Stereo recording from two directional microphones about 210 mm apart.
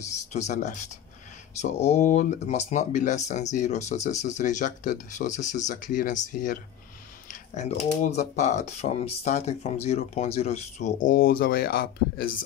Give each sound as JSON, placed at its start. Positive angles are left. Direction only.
{"t": 0.0, "sound": "speech", "side_deg": 35}